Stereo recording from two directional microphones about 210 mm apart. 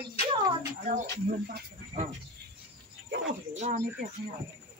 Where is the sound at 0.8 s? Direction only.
40° right (ahead or behind).